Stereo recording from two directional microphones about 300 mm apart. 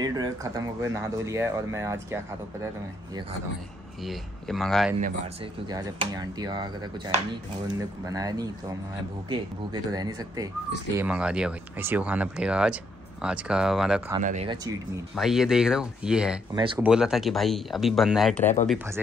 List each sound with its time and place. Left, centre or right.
0.0 s speech: centre
4.0 s speech: centre
5.0 s speech: right
8.1 s speech: centre
14.2 s speech: right
15.1 s speech: centre
16.5 s speech: centre
16.8 s speech: centre